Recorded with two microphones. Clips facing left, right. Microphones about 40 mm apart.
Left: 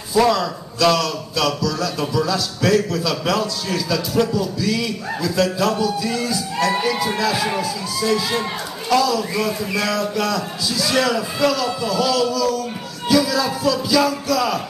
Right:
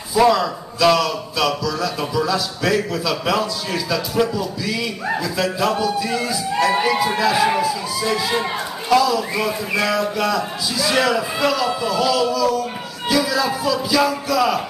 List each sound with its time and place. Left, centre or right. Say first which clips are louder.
0.1 s speech: right 1 dB; centre